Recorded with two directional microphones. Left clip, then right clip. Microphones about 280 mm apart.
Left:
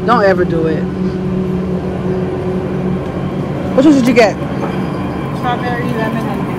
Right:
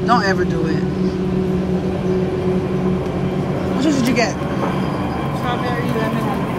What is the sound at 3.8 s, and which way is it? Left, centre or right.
Speech, centre.